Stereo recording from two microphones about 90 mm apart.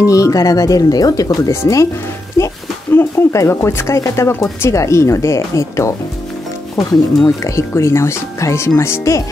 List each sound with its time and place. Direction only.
0.0 s speech: 40° left (ahead or behind)
7.2 s speech: 35° left (ahead or behind)